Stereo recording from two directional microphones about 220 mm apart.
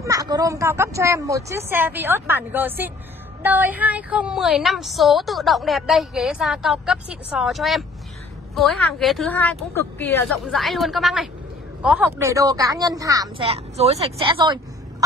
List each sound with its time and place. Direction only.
0.0 s a woman's voice: 15° right (ahead or behind)